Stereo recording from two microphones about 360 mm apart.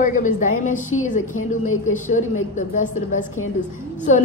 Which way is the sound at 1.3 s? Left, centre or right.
Left.